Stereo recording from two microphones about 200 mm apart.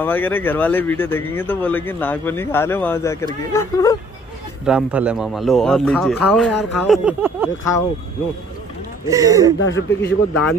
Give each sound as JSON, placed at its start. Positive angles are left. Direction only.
{"t": 0.0, "sound": "speech", "side_deg": 10}
{"t": 4.6, "sound": "a man's voice", "side_deg": -5}
{"t": 9.0, "sound": "speech", "side_deg": -15}
{"t": 9.6, "sound": "speech", "side_deg": 70}